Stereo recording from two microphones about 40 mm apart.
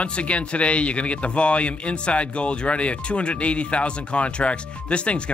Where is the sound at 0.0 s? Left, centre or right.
Left.